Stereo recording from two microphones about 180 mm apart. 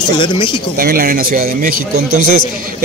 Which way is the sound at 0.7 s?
55° right (ahead or behind).